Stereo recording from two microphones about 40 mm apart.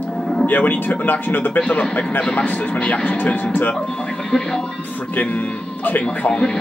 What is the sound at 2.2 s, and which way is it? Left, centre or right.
Speech, left.